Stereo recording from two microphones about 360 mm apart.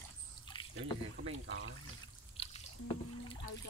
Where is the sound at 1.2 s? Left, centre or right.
Right.